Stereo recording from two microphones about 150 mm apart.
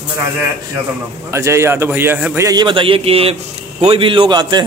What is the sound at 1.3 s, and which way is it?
A man's voice, 20° right (ahead or behind).